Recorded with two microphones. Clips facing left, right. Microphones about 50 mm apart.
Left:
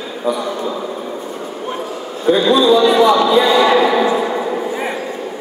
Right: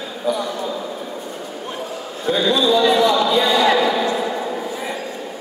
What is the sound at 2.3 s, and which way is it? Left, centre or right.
Speech, left.